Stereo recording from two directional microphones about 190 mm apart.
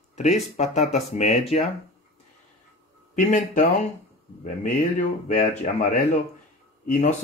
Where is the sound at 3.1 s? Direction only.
40° left (ahead or behind).